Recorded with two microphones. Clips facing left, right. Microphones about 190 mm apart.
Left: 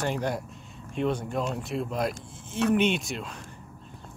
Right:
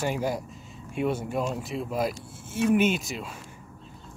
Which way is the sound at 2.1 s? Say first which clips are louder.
Even; 65° left (ahead or behind).